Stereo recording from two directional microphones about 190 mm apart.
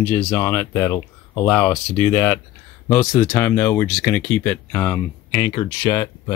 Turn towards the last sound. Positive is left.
turn(degrees=20)  # may be behind; listen again after turning